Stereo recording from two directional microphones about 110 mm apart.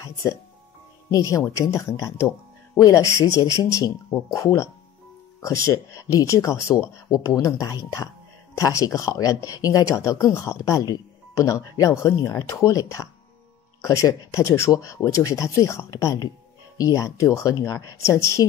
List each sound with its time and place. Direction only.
1.1 s speech: 30° left (ahead or behind)
5.7 s speech: 30° left (ahead or behind)